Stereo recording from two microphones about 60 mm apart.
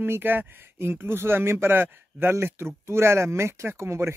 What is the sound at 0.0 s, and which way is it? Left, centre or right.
Speech, right.